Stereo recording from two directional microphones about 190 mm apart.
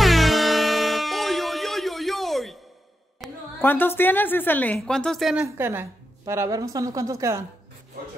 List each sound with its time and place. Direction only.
0.0 s air horn: centre (ahead or behind)
3.2 s a sound: centre (ahead or behind)
3.6 s a woman's voice: 10° left (ahead or behind)
5.4 s a woman's voice: 10° right (ahead or behind)